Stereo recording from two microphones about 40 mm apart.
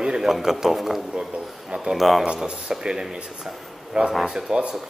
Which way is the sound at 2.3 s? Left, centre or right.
Centre.